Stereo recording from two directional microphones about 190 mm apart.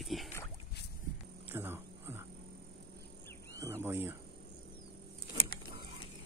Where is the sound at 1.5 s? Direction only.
10° right (ahead or behind).